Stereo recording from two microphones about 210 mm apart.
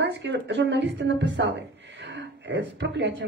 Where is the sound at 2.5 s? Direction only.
60° right (ahead or behind).